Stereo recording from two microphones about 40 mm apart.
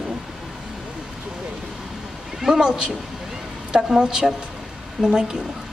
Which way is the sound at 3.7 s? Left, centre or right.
Centre.